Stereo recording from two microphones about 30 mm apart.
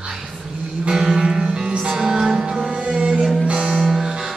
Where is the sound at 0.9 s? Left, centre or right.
Centre.